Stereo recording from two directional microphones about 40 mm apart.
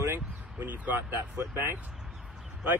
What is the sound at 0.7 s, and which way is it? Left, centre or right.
Speech, right.